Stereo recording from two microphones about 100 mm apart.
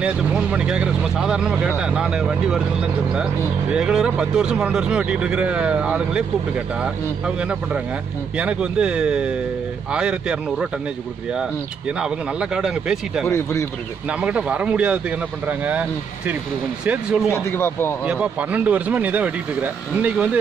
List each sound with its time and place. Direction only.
0.0 s speech: 10° right (ahead or behind)
12.0 s speech: 5° right (ahead or behind)
13.3 s a man's voice: 30° left (ahead or behind)
14.0 s speech: 10° right (ahead or behind)
17.3 s a man's voice: 25° left (ahead or behind)
18.0 s speech: 10° right (ahead or behind)